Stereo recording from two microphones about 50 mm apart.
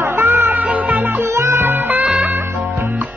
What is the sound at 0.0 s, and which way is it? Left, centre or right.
Music, right.